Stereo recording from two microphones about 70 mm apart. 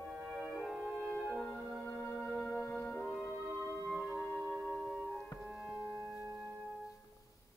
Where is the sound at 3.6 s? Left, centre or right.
Left.